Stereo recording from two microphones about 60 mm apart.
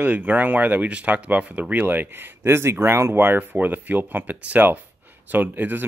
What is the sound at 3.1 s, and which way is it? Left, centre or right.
Speech, right.